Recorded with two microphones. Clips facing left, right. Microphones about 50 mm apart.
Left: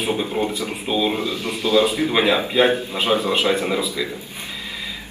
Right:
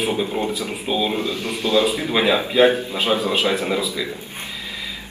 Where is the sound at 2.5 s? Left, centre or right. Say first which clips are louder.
Right 2 dB; centre.